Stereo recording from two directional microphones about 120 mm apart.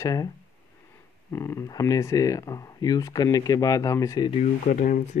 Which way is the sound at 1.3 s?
25° left (ahead or behind).